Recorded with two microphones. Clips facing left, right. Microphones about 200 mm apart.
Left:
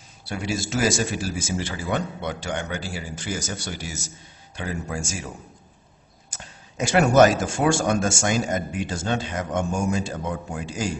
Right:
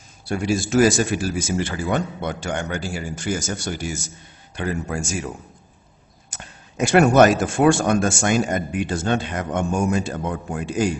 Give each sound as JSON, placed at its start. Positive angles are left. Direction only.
{"t": 0.3, "sound": "speech", "side_deg": -50}
{"t": 6.3, "sound": "speech", "side_deg": -60}